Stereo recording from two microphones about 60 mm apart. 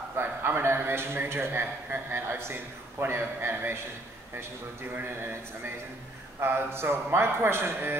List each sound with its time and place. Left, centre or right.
0.2 s a man's voice: right
4.9 s a man's voice: right
6.4 s a man's voice: right